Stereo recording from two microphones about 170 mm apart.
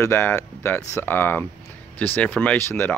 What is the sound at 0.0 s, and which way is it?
Speech, 15° left (ahead or behind).